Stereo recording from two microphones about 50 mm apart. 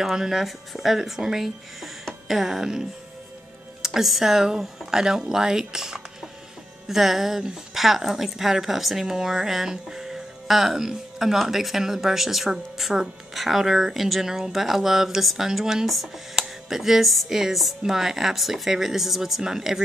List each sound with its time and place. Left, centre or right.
0.0 s a woman's voice: centre
16.3 s music: centre
17.4 s a woman's voice: centre